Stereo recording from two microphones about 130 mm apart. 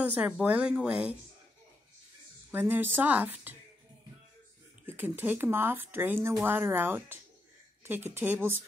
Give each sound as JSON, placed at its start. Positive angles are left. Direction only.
{"t": 0.0, "sound": "speech", "side_deg": -10}
{"t": 2.5, "sound": "speech", "side_deg": -15}
{"t": 4.8, "sound": "speech", "side_deg": -15}